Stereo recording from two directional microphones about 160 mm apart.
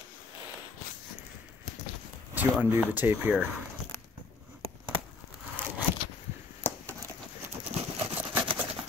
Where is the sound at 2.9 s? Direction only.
10° right (ahead or behind).